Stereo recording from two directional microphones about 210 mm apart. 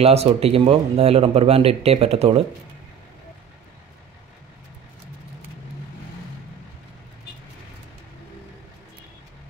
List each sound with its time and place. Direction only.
0.0 s speech: 30° right (ahead or behind)